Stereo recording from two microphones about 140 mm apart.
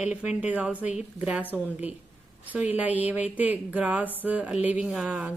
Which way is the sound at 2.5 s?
10° right (ahead or behind).